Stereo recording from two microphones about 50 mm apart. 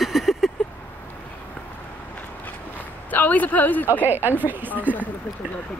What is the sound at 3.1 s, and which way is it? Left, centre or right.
Speech, left.